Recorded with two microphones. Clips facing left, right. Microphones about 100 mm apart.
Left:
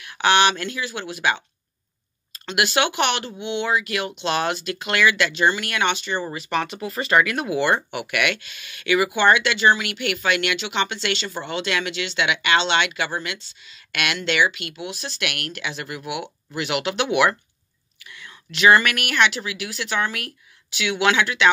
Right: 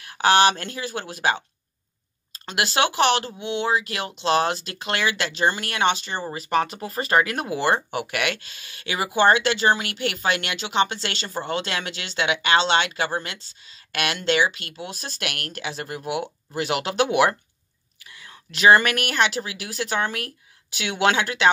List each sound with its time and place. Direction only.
0.0 s speech: 35° right (ahead or behind)
2.4 s speech: 35° right (ahead or behind)